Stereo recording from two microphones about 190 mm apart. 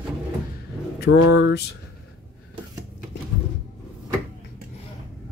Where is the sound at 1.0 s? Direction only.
75° left (ahead or behind).